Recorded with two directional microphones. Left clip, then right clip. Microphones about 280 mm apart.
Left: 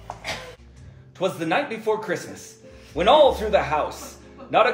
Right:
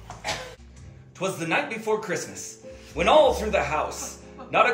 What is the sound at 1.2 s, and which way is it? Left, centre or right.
A man's voice, left.